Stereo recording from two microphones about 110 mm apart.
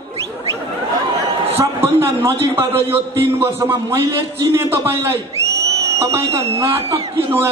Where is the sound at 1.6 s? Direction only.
25° right (ahead or behind).